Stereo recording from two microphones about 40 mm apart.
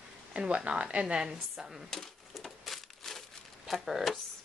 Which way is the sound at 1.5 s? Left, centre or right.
Centre.